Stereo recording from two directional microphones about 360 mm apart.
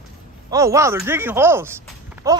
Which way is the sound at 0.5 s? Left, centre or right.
Centre.